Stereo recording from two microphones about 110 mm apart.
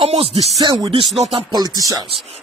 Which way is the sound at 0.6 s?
40° right (ahead or behind).